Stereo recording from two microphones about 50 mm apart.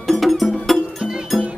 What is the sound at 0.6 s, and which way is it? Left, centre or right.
Music, centre.